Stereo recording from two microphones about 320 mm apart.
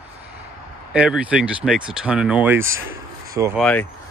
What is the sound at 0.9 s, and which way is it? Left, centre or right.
Speech, centre.